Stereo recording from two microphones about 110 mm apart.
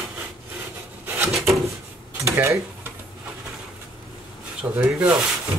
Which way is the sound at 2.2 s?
25° right (ahead or behind).